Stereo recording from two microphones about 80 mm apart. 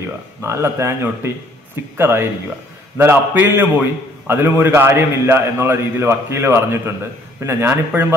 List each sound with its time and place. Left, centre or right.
0.4 s a man's voice: right